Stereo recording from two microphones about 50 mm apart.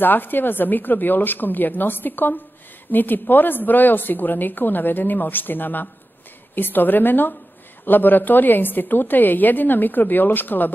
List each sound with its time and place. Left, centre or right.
0.0 s a woman's voice: left